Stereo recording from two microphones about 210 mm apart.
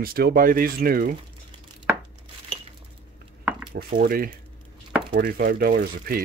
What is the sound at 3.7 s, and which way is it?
Speech, 45° right (ahead or behind).